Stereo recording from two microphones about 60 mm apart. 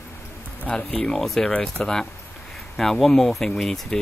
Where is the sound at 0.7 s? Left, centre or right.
Centre.